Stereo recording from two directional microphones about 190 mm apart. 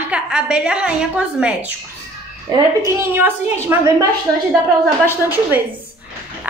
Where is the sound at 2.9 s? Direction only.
10° right (ahead or behind).